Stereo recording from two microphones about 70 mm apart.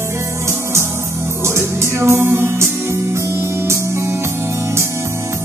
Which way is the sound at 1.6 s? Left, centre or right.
Right.